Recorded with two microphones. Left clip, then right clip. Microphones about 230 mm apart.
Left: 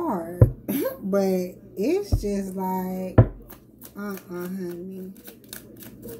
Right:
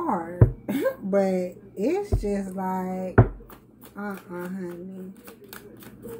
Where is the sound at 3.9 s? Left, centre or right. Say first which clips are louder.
Even; centre.